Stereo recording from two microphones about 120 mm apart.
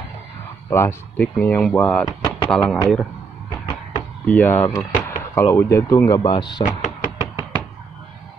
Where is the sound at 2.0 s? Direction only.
35° left (ahead or behind).